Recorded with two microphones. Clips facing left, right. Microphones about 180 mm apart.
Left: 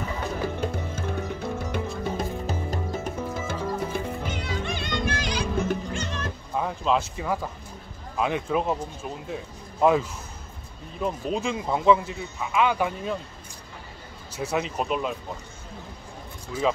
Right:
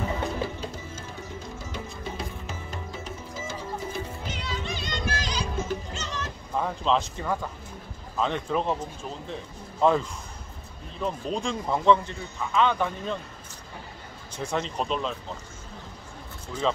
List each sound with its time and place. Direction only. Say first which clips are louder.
0.6 s music: left 7 dB; 60° left (ahead or behind)
2.4 s music: left 7 dB; 35° left (ahead or behind); by 6.3 s 55° left (ahead or behind)
6.5 s speech: even; 5° left (ahead or behind)
14.3 s speech: left 2 dB; 10° left (ahead or behind)
16.5 s speech: left 2 dB; 10° left (ahead or behind)